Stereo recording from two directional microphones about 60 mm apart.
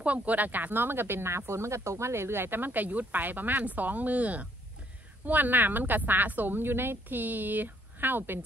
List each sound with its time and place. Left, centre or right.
0.0 s speech: right